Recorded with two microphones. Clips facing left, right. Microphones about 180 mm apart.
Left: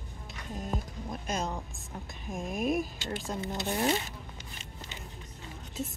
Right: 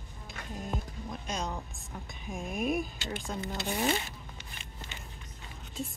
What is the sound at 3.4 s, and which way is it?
Speech, 20° left (ahead or behind).